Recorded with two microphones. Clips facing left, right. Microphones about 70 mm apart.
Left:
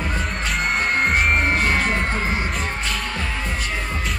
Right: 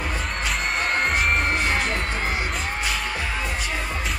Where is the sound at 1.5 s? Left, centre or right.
Left.